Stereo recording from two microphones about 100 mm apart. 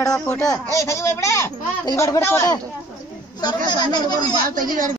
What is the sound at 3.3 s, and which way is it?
Speech, 45° left (ahead or behind).